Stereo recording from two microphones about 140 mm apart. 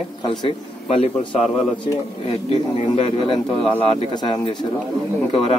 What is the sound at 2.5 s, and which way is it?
Speech, 40° left (ahead or behind).